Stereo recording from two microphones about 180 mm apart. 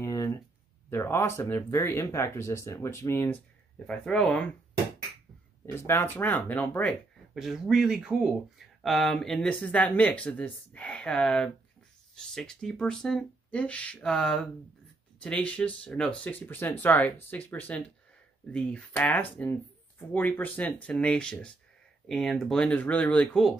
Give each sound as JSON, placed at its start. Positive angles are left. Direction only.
{"t": 0.0, "sound": "a sound", "side_deg": 20}
{"t": 0.8, "sound": "speech", "side_deg": 15}
{"t": 3.8, "sound": "speech", "side_deg": 5}
{"t": 5.7, "sound": "speech", "side_deg": 15}
{"t": 7.3, "sound": "speech", "side_deg": 0}